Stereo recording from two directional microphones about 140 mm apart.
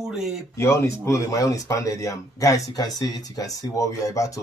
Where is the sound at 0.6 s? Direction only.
20° left (ahead or behind).